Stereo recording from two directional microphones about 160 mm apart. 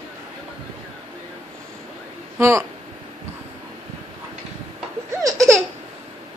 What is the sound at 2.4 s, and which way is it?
Speech, 15° right (ahead or behind).